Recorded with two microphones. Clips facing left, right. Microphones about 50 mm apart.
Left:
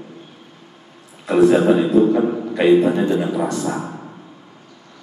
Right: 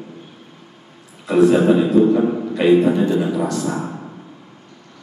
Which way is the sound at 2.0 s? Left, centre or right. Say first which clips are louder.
Right 1 dB; centre.